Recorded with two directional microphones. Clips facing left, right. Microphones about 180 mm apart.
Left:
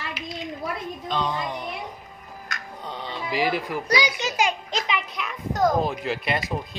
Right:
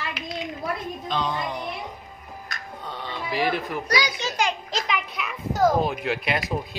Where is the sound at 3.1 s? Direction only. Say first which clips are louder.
Even; 15° left (ahead or behind).